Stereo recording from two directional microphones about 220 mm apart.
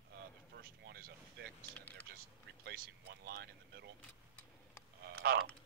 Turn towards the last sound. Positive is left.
turn(degrees=-45)  # may be behind; listen again after turning